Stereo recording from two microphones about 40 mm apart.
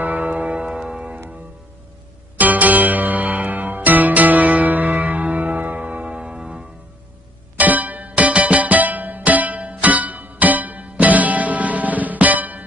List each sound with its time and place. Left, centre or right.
0.0 s music: right
0.3 s music: right
2.3 s music: right; by 6.6 s centre
7.5 s music: right